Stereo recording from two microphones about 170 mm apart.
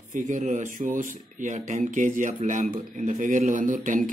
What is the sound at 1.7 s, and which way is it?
Speech, 50° right (ahead or behind).